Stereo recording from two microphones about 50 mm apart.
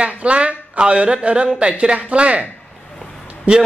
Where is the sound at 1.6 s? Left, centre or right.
Right.